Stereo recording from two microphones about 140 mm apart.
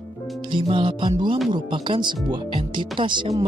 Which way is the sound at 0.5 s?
35° right (ahead or behind).